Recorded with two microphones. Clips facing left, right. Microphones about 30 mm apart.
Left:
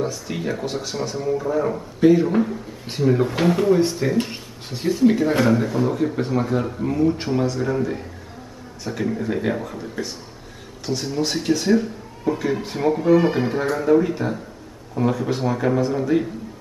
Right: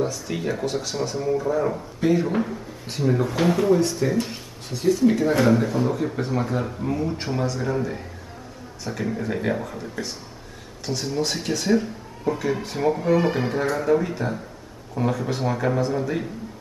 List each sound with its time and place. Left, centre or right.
0.0 s speech: centre
3.2 s speech: left
5.4 s speech: centre